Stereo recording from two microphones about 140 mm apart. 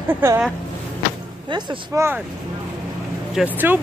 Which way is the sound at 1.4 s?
35° right (ahead or behind).